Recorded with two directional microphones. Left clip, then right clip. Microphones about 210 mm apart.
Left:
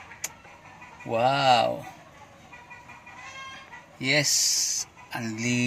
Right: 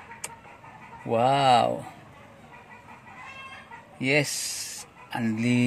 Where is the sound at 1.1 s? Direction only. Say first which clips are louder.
Right 1 dB; 15° right (ahead or behind).